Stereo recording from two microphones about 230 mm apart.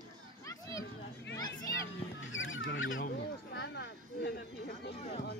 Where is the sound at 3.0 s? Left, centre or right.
Left.